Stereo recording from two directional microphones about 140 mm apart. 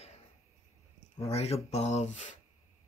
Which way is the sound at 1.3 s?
50° left (ahead or behind).